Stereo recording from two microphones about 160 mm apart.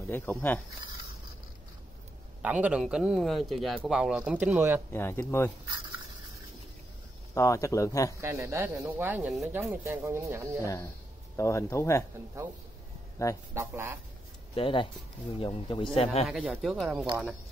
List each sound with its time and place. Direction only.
0.1 s speech: 10° left (ahead or behind)
2.4 s speech: 10° right (ahead or behind)
4.9 s speech: 15° left (ahead or behind)
7.3 s speech: 20° left (ahead or behind)
8.2 s speech: 15° right (ahead or behind)
10.6 s speech: 20° left (ahead or behind)
13.2 s speech: 20° left (ahead or behind)
13.6 s speech: 15° right (ahead or behind)
14.5 s speech: 35° left (ahead or behind)
16.3 s speech: 5° right (ahead or behind)